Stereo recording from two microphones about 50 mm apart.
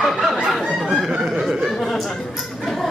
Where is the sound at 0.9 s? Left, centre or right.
Centre.